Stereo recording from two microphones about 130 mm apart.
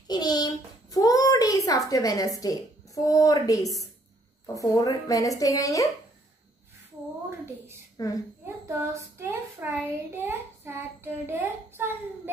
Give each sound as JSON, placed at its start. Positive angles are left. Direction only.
{"t": 0.1, "sound": "a sound", "side_deg": 30}
{"t": 2.4, "sound": "a woman's voice", "side_deg": 25}
{"t": 7.2, "sound": "a woman's voice", "side_deg": -20}
{"t": 9.2, "sound": "a child's voice", "side_deg": -15}